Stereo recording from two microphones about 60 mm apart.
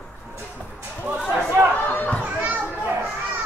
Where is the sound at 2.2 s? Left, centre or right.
Right.